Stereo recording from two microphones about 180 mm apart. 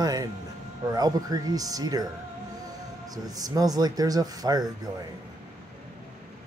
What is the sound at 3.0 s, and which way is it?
Speech, 20° right (ahead or behind).